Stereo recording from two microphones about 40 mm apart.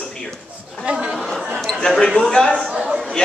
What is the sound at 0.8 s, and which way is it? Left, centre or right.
Speech, right.